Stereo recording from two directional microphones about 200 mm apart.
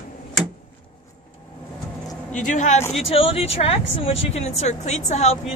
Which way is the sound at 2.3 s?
40° left (ahead or behind).